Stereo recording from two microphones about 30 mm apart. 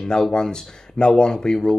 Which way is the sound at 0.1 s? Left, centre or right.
Left.